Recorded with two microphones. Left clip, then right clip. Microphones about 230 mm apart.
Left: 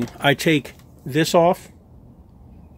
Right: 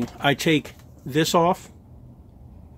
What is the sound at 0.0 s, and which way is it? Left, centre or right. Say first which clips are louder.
Speech: left 3 dB; centre.